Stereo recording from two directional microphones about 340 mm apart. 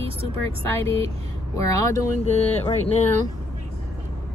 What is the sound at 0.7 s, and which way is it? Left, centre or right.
Speech, centre.